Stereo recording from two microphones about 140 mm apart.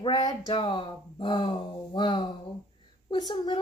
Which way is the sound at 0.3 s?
35° left (ahead or behind).